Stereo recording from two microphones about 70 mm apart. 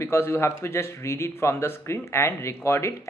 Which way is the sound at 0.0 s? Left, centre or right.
Left.